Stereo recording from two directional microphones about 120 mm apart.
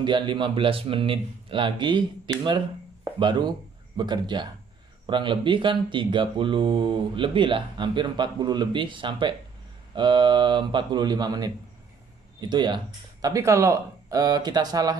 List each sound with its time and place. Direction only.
0.0 s speech: 40° right (ahead or behind)